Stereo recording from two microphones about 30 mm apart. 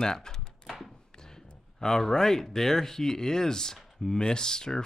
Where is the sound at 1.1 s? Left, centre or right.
Centre.